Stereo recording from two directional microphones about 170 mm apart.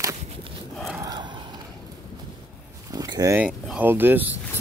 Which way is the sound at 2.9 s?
20° right (ahead or behind).